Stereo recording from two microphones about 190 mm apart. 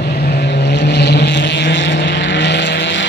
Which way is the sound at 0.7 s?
65° left (ahead or behind).